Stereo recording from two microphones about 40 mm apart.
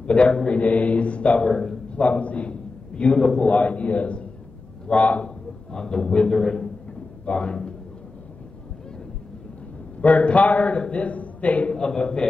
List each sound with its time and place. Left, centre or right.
0.0 s a man's voice: left
0.6 s speech: left
1.9 s a sound: left
3.2 s a man's voice: centre
3.4 s speech: left
5.7 s a man's voice: centre
10.0 s a man's voice: left
11.7 s a man's voice: centre